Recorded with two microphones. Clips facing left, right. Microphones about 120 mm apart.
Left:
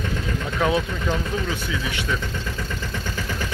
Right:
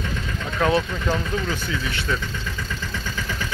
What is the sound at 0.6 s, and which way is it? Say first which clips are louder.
Speech: right 1 dB; 5° left (ahead or behind).